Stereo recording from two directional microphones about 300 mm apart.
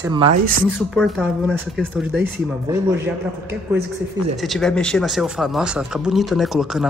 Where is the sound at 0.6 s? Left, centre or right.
Centre.